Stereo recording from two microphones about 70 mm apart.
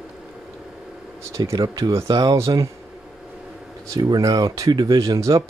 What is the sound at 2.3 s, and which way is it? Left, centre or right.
Speech, right.